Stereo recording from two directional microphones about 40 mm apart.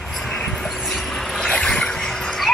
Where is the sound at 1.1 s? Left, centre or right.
Centre.